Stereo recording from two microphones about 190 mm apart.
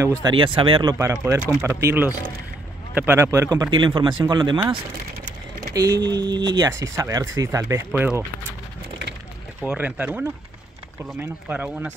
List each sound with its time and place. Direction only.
0.0 s speech: 25° right (ahead or behind)
0.9 s speech: 15° right (ahead or behind)
5.8 s speech: 20° right (ahead or behind)
9.6 s speech: 5° right (ahead or behind)